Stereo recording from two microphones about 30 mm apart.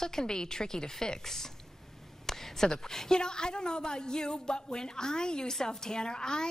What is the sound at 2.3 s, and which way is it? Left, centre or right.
Speech, centre.